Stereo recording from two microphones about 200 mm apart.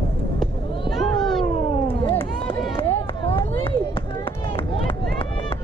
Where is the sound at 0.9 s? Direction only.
Centre (ahead or behind).